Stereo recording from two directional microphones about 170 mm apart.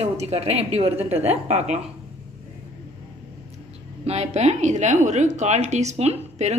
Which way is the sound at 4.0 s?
40° right (ahead or behind).